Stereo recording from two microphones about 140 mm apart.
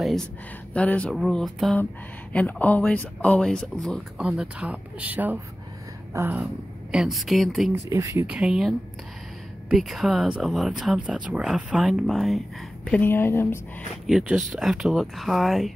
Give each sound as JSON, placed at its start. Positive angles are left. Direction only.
{"t": 0.0, "sound": "a sound", "side_deg": 0}
{"t": 0.7, "sound": "speech", "side_deg": 10}
{"t": 4.2, "sound": "speech", "side_deg": -5}
{"t": 7.9, "sound": "speech", "side_deg": -20}
{"t": 8.3, "sound": "speech", "side_deg": -5}
{"t": 14.0, "sound": "speech", "side_deg": 0}